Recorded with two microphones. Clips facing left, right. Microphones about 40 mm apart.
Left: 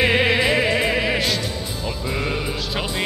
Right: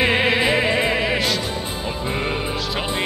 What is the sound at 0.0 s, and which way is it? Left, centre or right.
Music, centre.